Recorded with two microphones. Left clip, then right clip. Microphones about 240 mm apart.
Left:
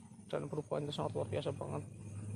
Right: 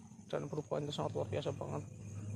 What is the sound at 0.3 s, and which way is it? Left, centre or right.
Speech, centre.